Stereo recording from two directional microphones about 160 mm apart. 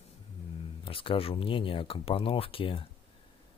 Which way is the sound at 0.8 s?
35° left (ahead or behind).